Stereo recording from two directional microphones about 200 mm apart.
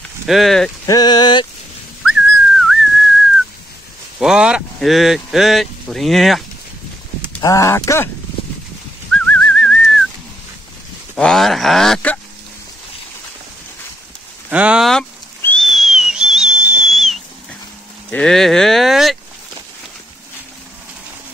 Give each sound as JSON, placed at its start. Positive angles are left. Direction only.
{"t": 0.3, "sound": "speech", "side_deg": 0}
{"t": 0.8, "sound": "speech", "side_deg": 20}
{"t": 2.0, "sound": "whistling", "side_deg": 0}
{"t": 4.2, "sound": "speech", "side_deg": -5}
{"t": 7.3, "sound": "speech", "side_deg": 15}
{"t": 9.3, "sound": "whistling", "side_deg": 5}
{"t": 11.1, "sound": "speech", "side_deg": 0}
{"t": 14.5, "sound": "whistle", "side_deg": -5}
{"t": 18.1, "sound": "speech", "side_deg": 5}